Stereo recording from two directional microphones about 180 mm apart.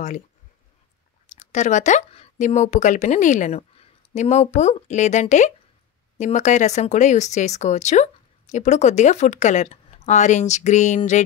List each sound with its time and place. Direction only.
1.3 s speech: 40° left (ahead or behind)